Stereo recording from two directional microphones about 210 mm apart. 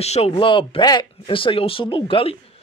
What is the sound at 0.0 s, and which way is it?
Speech, 30° left (ahead or behind).